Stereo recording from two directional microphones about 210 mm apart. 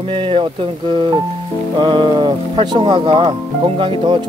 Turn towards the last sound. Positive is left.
turn(degrees=-25)  # may be behind; listen again after turning